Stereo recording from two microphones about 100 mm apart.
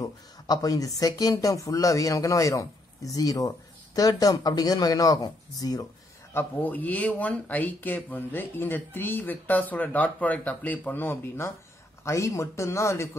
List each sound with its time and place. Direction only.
0.0 s speech: 40° left (ahead or behind)
6.3 s speech: 15° left (ahead or behind)